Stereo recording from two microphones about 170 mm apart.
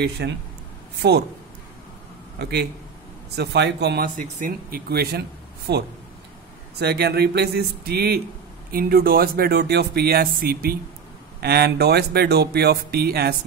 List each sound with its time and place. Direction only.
0.0 s speech: 85° right
2.3 s speech: 75° right (ahead or behind)
4.4 s speech: 60° right (ahead or behind)
5.7 s speech: 80° right